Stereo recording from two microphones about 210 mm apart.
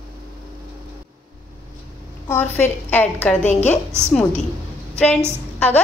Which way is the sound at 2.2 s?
10° left (ahead or behind).